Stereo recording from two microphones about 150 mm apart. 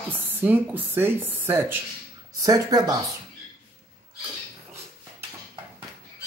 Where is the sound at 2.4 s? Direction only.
25° right (ahead or behind).